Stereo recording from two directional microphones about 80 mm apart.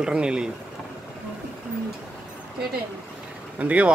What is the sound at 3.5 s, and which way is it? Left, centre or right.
Speech, centre.